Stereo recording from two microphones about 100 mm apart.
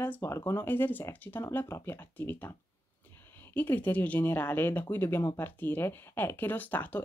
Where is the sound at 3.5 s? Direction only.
20° left (ahead or behind).